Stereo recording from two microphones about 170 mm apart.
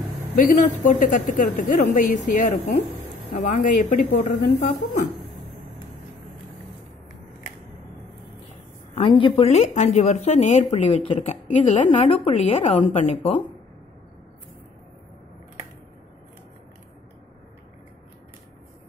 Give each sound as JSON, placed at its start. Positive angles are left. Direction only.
{"t": 0.5, "sound": "a woman's voice", "side_deg": 50}
{"t": 8.9, "sound": "speech", "side_deg": 30}